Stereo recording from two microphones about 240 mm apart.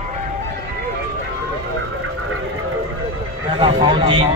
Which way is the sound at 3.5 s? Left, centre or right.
Right.